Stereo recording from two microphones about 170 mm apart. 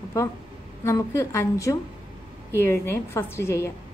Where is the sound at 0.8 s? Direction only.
15° left (ahead or behind).